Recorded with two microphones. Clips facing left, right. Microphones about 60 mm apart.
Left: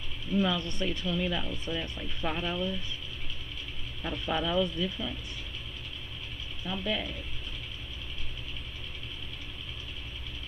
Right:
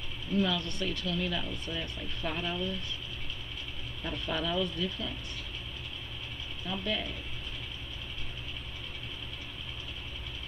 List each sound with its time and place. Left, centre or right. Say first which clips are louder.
0.4 s speech: left 2 dB; centre
4.0 s speech: left 3 dB; centre
6.7 s speech: left 2 dB; centre